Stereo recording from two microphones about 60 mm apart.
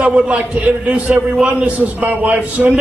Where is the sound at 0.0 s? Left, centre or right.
Right.